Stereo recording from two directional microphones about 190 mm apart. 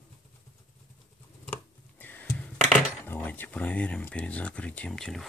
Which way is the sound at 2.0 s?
10° left (ahead or behind).